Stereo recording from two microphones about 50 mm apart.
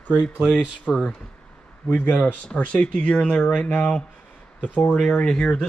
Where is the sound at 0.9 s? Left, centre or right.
Centre.